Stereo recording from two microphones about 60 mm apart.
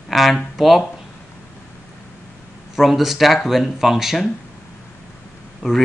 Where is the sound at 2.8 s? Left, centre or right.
Centre.